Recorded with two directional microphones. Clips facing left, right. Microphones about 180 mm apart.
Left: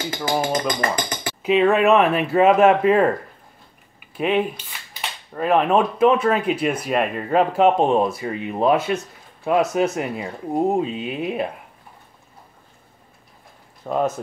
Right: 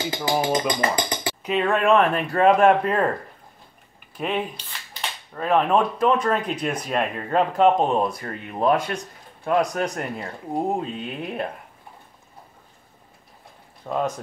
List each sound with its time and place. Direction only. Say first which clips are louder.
0.1 s speech: left 1 dB; 20° right (ahead or behind)
1.4 s speech: left 6 dB; 10° left (ahead or behind)
4.2 s speech: left 6 dB; 5° left (ahead or behind)
13.8 s speech: left 3 dB; 10° left (ahead or behind)